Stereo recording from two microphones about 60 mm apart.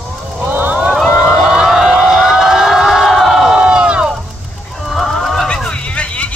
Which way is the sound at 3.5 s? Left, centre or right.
Centre.